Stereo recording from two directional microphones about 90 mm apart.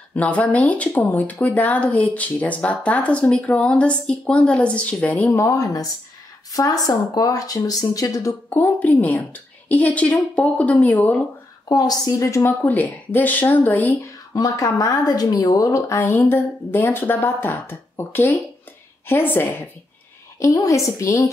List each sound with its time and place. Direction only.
0.1 s speech: 15° left (ahead or behind)
5.3 s speech: 35° left (ahead or behind)
8.5 s speech: 20° left (ahead or behind)
11.7 s a woman's voice: 45° left (ahead or behind)
12.6 s a woman's voice: 20° left (ahead or behind)
14.3 s a woman's voice: 40° left (ahead or behind); by 19.5 s 20° left (ahead or behind)
20.3 s speech: 35° left (ahead or behind)